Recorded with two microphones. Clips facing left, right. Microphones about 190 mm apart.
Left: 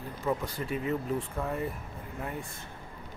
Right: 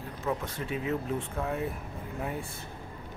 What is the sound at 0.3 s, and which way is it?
Speech, centre (ahead or behind).